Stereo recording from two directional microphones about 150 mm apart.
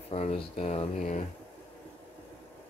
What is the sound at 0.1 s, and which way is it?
Speech, 45° left (ahead or behind).